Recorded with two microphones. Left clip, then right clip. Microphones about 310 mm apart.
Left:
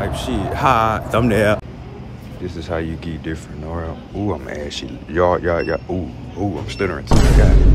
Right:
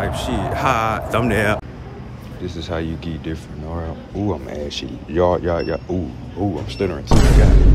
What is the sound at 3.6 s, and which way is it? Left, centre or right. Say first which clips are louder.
Speech: left 2 dB; left.